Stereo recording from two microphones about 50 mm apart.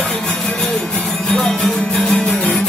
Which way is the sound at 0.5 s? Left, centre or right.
Centre.